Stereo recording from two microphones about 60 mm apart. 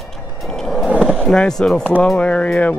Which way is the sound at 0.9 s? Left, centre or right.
Centre.